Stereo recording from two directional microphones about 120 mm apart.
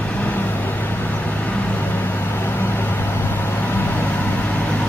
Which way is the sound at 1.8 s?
15° left (ahead or behind).